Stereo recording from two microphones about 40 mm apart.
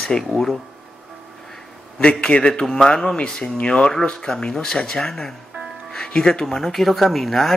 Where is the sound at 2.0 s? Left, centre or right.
Left.